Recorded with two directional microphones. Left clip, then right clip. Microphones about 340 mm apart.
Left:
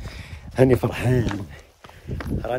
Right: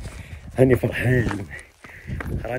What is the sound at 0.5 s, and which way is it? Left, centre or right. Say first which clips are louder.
Speech: even; centre.